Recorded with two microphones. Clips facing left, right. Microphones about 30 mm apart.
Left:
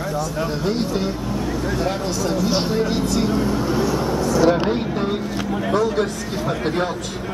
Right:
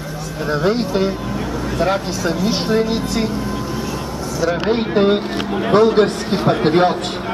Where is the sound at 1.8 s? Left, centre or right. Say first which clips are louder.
Right 4 dB; centre.